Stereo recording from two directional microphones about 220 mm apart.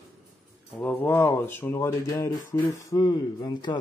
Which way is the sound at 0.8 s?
5° left (ahead or behind).